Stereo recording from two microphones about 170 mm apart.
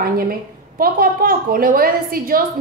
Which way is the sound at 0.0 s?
60° right (ahead or behind).